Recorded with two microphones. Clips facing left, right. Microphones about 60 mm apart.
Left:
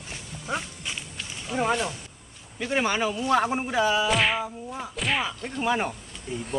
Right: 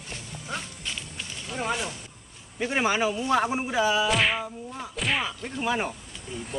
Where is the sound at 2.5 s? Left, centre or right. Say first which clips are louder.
Even; centre.